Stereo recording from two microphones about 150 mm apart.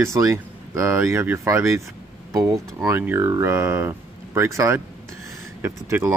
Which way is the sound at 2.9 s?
15° right (ahead or behind).